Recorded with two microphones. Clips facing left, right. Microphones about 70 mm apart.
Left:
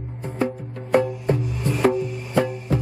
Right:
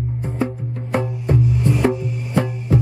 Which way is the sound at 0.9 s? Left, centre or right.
Centre.